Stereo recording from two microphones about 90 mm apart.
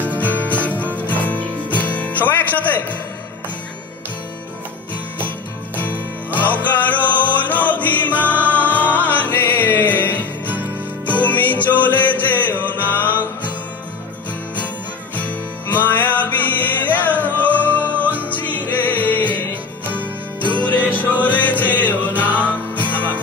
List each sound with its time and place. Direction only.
0.0 s music: 15° left (ahead or behind)
5.8 s music: 20° left (ahead or behind)
15.1 s music: 20° left (ahead or behind)
17.9 s music: 20° right (ahead or behind)
18.3 s music: 20° left (ahead or behind)
21.2 s music: 15° left (ahead or behind)